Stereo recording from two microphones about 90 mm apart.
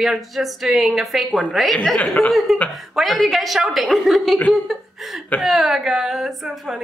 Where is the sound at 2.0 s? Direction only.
15° left (ahead or behind).